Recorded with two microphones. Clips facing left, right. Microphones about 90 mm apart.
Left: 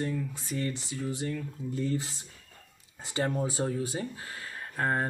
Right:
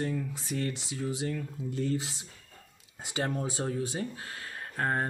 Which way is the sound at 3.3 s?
Centre (ahead or behind).